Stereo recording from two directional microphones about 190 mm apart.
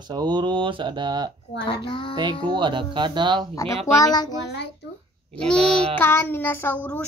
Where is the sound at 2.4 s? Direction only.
25° right (ahead or behind).